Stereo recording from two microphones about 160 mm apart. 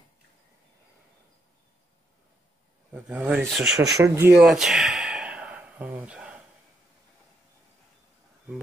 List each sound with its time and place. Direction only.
2.9 s speech: 5° right (ahead or behind)
4.0 s speech: 15° right (ahead or behind)
4.4 s a sound: centre (ahead or behind)